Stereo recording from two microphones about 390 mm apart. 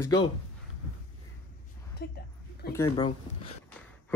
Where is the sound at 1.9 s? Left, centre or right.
Left.